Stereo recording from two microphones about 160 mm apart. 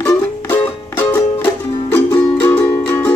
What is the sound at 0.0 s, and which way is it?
Music, 10° left (ahead or behind).